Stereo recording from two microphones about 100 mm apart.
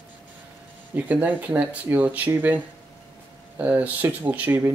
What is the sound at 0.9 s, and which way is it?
Speech, 20° right (ahead or behind).